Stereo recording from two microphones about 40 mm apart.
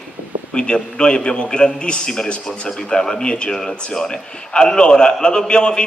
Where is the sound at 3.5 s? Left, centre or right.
Centre.